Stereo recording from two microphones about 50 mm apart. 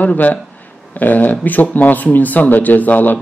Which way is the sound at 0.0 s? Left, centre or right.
Left.